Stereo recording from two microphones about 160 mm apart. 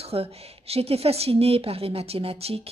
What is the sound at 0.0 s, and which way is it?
A woman's voice, 40° right (ahead or behind).